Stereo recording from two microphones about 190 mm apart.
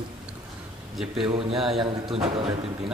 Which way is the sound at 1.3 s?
30° right (ahead or behind).